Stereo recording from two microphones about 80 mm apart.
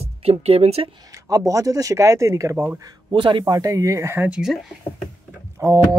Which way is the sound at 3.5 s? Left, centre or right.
Right.